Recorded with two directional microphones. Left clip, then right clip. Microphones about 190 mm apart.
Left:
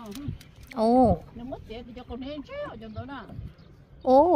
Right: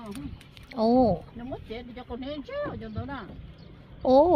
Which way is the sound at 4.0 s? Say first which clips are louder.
Left 1 dB; 10° left (ahead or behind).